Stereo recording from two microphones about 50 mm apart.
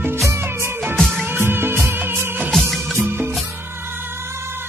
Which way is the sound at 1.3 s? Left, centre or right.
Right.